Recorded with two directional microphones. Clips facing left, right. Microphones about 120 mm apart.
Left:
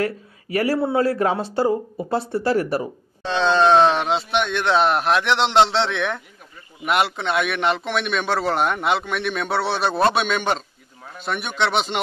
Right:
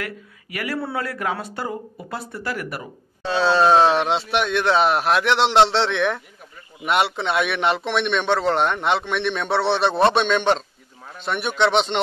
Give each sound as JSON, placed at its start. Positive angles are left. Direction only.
{"t": 0.0, "sound": "speech", "side_deg": 35}
{"t": 3.3, "sound": "speech", "side_deg": -5}